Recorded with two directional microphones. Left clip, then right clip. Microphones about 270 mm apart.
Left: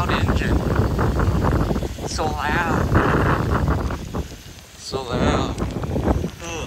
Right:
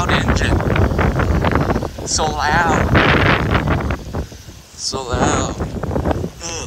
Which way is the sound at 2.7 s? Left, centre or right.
Right.